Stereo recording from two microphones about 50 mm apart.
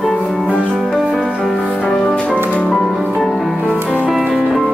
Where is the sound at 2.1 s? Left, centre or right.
Left.